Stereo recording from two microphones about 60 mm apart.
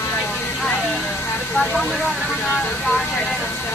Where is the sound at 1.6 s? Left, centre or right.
Left.